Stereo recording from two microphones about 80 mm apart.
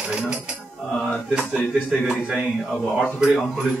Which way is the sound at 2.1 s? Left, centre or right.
Centre.